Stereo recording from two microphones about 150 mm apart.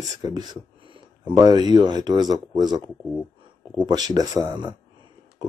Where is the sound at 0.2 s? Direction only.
30° right (ahead or behind).